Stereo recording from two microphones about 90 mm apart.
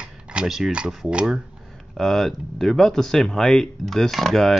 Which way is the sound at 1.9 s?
5° left (ahead or behind).